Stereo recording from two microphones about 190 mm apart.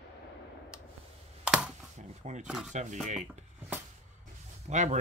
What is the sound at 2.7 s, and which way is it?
Speech, 40° right (ahead or behind).